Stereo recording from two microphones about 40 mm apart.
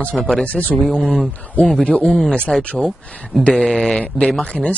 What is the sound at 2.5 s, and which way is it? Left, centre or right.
Speech, centre.